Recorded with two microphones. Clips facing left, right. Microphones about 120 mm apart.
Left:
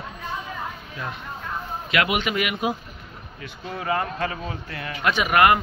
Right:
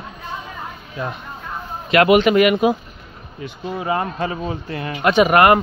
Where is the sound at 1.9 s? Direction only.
40° right (ahead or behind).